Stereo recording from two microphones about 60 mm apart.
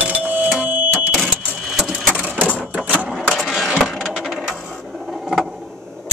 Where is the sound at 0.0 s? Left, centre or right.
Right.